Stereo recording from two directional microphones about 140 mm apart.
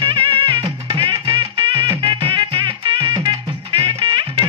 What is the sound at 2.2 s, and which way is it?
Music, 35° right (ahead or behind).